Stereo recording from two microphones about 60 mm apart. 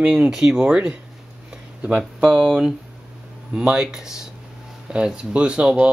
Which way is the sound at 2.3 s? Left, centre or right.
Right.